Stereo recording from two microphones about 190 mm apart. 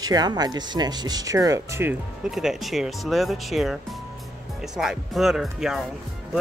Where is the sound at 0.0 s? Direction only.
20° right (ahead or behind).